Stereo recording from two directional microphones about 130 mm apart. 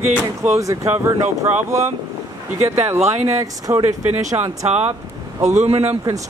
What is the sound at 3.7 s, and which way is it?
Speech, 25° right (ahead or behind).